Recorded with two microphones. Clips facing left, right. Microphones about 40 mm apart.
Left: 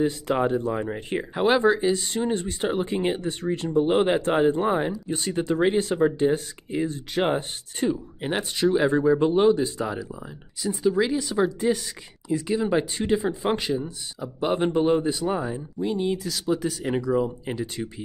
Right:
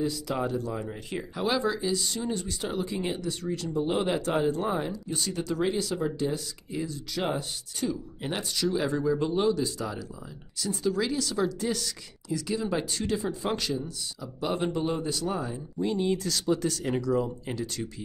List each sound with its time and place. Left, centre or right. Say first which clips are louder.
0.0 s speech: left 6 dB; left
10.6 s speech: left 5 dB; centre
15.8 s speech: left 1 dB; centre